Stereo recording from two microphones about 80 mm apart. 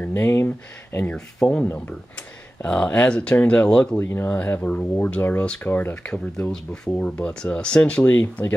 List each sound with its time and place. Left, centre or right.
0.0 s speech: left
1.1 s speech: centre
4.0 s speech: left; by 8.0 s centre
8.0 s speech: left